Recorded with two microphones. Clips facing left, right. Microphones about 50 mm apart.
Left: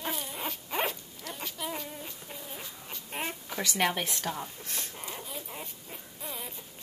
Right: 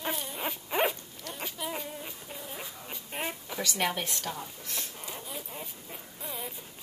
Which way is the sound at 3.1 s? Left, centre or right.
Centre.